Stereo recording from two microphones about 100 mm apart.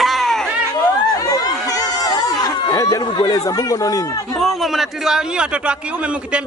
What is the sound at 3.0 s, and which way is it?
Speech, 45° left (ahead or behind).